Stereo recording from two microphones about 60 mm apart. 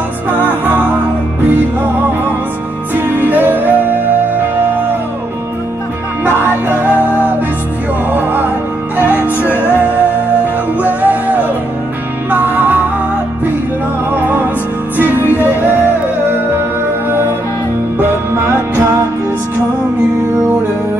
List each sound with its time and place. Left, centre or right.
3.2 s music: right
6.2 s music: right
8.1 s music: right
14.1 s music: right
18.3 s music: right